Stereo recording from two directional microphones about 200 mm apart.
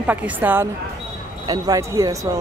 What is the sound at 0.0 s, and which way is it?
Speech, 10° right (ahead or behind).